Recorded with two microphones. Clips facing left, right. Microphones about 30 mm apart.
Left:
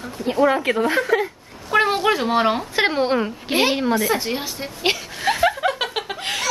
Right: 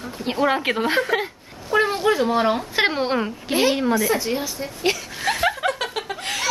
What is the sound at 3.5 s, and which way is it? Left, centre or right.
A woman's voice, centre.